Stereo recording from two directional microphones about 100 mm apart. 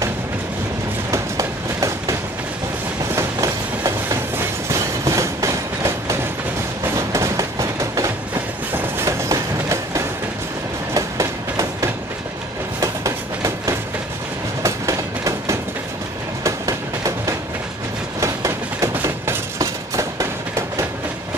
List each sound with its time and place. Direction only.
1.1 s train: 30° right (ahead or behind)
3.2 s train: 35° right (ahead or behind)
14.6 s train: 30° right (ahead or behind)